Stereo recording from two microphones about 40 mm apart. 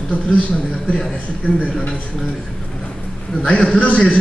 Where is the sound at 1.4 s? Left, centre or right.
Left.